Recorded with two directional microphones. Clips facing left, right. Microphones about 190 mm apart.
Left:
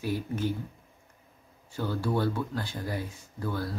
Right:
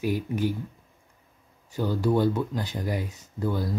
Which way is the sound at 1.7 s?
15° right (ahead or behind).